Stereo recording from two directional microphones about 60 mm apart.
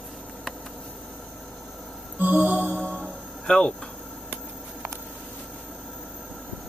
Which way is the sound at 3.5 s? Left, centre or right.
Centre.